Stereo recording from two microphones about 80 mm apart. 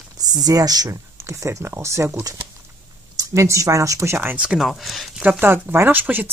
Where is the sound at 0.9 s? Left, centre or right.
Right.